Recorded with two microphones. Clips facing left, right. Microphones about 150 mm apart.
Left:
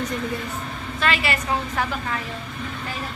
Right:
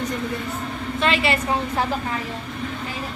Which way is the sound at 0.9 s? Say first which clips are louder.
Right 3 dB; 25° right (ahead or behind).